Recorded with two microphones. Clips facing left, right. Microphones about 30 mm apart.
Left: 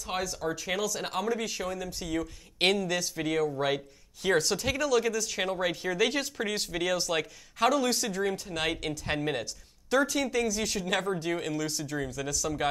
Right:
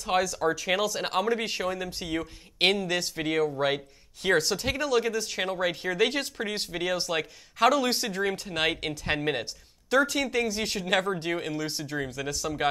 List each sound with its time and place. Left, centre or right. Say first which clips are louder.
0.0 s speech: right 7 dB; right
0.7 s speech: right 4 dB; right
3.6 s speech: right 2 dB; right
4.9 s speech: right 2 dB; right
6.3 s speech: even; centre
7.6 s speech: right 3 dB; right
9.0 s speech: right 3 dB; right
9.8 s speech: right 2 dB; right